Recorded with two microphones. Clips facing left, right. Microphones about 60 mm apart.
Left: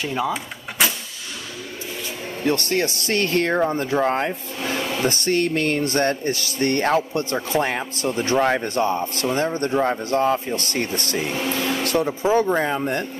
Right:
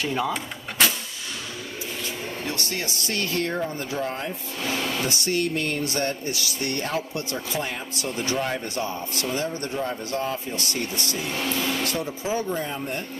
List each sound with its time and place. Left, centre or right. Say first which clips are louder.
0.0 s a sound: left 2 dB; centre
2.4 s speech: left 12 dB; left
4.7 s speech: left 2 dB; centre
5.0 s speech: left 8 dB; left
8.1 s speech: left 6 dB; left
8.4 s speech: left 8 dB; left
11.3 s speech: left 1 dB; centre
11.8 s speech: left 7 dB; left